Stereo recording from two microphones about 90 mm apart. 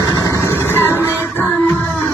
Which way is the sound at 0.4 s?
25° left (ahead or behind).